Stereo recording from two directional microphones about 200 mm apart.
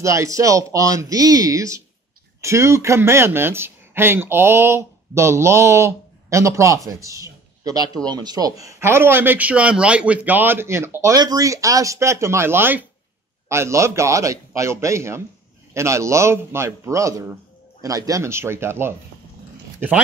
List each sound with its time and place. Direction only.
0.0 s speech: 15° right (ahead or behind)